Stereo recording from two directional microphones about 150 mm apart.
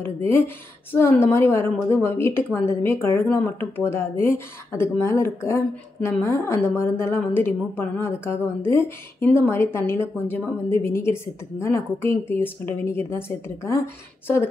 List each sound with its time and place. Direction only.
0.9 s a woman's voice: 15° left (ahead or behind)
14.2 s a woman's voice: 15° left (ahead or behind)